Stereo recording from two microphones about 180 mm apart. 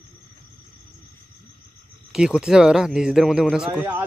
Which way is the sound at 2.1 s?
5° right (ahead or behind).